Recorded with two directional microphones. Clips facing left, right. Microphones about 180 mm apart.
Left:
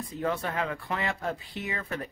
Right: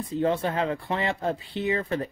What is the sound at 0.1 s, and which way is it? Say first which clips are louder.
Speech: right 6 dB; 30° right (ahead or behind).